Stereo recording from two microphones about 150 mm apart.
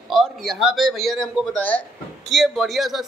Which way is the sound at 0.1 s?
Centre (ahead or behind).